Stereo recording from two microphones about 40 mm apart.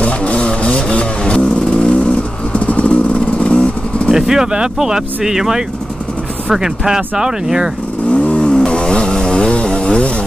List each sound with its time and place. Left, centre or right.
0.0 s vehicle: left
4.1 s speech: centre
8.1 s vehicle: left
8.4 s chainsaw: centre